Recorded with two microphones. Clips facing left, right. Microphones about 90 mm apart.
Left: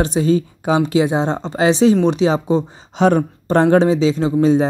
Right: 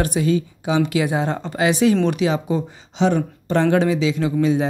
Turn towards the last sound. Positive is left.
turn(degrees=35)  # may be behind; listen again after turning